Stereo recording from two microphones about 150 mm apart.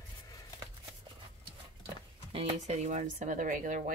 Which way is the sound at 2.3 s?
45° right (ahead or behind).